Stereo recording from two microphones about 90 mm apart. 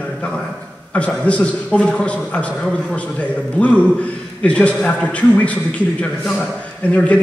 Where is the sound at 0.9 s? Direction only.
15° left (ahead or behind).